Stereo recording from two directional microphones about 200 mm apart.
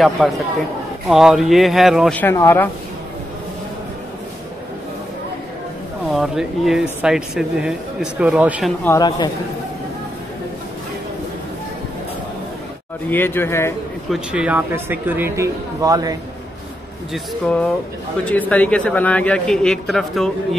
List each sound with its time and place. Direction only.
0.2 s speech: 5° right (ahead or behind); by 2.7 s 10° left (ahead or behind)
6.0 s speech: centre (ahead or behind)
8.8 s speech: 20° left (ahead or behind)
13.1 s speech: 10° left (ahead or behind)
14.1 s a man's voice: 5° right (ahead or behind)
17.1 s speech: centre (ahead or behind)